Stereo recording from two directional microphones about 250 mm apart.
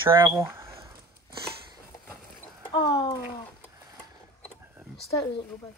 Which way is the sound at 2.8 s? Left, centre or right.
Centre.